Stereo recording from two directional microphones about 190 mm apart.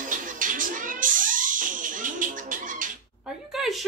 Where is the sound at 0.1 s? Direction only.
45° right (ahead or behind).